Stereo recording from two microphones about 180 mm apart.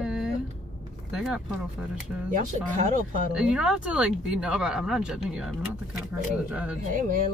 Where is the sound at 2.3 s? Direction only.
45° right (ahead or behind).